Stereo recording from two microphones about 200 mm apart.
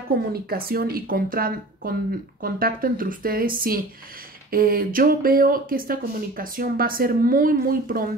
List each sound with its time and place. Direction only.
0.1 s speech: 50° right (ahead or behind)